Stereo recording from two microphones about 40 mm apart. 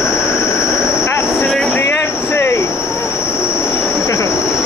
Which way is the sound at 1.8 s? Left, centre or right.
Left.